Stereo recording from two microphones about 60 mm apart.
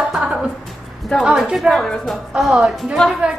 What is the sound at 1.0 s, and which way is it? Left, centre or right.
A woman's voice, centre.